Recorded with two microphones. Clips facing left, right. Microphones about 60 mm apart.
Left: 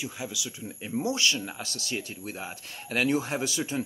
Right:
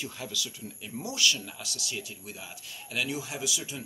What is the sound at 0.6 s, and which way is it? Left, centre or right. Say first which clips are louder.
Speech: left 8 dB; left.